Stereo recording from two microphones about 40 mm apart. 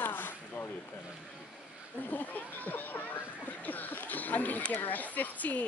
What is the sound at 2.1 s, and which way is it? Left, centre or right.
Speech, left.